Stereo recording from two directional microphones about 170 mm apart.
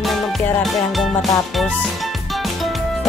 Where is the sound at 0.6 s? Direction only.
Centre (ahead or behind).